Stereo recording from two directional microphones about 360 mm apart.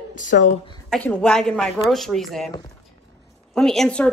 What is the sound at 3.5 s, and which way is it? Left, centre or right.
Speech, centre.